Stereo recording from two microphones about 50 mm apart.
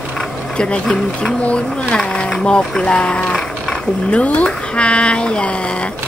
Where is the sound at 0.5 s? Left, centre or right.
Left.